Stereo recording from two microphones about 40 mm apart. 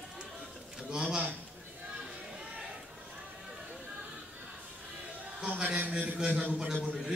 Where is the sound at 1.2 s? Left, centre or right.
Right.